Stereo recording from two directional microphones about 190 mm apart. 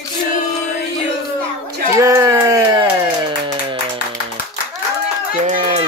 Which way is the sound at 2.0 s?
15° right (ahead or behind).